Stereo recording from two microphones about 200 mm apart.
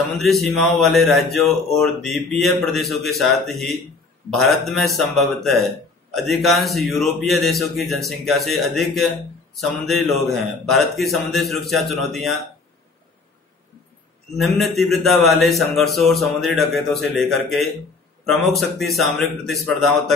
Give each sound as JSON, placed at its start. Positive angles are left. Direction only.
{"t": 0.1, "sound": "speech", "side_deg": 0}
{"t": 14.3, "sound": "speech", "side_deg": 0}